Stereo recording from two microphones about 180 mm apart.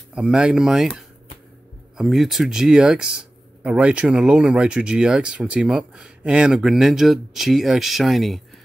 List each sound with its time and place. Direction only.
0.1 s speech: 5° right (ahead or behind)